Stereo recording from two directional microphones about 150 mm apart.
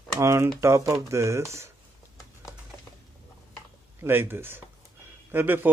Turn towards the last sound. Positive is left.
turn(degrees=-15)  # may be behind; listen again after turning